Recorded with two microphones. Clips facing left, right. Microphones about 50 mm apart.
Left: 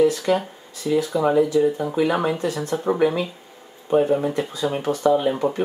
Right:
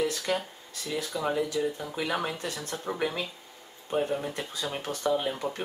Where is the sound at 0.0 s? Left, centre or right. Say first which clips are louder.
Left 10 dB; centre.